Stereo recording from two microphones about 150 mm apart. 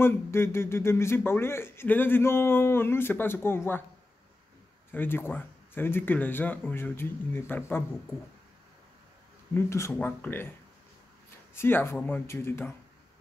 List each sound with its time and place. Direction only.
0.0 s speech: 15° left (ahead or behind)
4.9 s speech: 15° left (ahead or behind)
9.5 s speech: 20° left (ahead or behind)
11.5 s speech: 15° left (ahead or behind)